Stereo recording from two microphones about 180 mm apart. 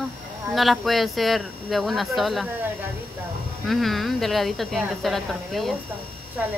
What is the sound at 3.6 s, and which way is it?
Speech, centre (ahead or behind).